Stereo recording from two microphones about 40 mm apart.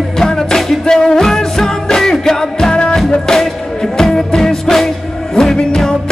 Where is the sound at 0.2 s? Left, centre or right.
Centre.